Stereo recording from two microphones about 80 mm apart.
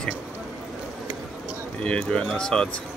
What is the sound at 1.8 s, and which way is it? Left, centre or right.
Speech, centre.